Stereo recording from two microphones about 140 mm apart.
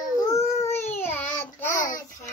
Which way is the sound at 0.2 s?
20° left (ahead or behind).